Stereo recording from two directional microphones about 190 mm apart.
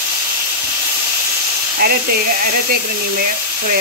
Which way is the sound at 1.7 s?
55° right (ahead or behind).